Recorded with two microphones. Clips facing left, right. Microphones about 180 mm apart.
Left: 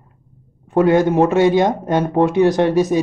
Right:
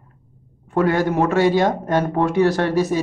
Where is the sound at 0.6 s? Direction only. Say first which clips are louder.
Left 5 dB; 20° left (ahead or behind).